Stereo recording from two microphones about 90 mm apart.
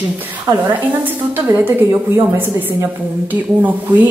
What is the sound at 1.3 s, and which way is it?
Speech, 20° right (ahead or behind).